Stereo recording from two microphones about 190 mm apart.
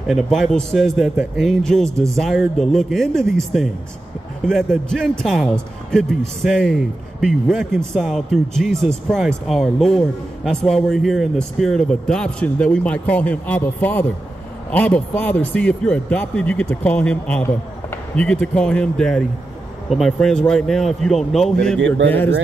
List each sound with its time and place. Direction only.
0.1 s a man's voice: centre (ahead or behind)
21.7 s speech: 80° right